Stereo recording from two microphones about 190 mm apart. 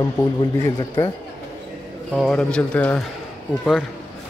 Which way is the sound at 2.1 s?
5° left (ahead or behind).